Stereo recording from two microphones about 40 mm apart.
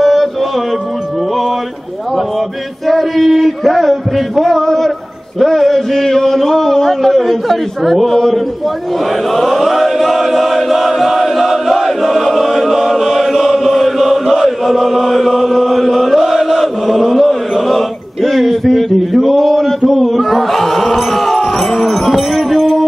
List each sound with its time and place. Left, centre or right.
0.0 s music: centre
2.9 s a man's voice: centre
9.3 s chant: centre